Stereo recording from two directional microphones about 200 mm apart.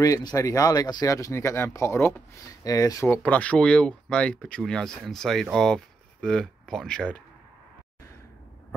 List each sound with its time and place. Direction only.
0.0 s speech: 15° left (ahead or behind)